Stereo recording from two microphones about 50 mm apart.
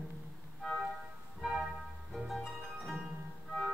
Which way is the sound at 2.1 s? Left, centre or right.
Centre.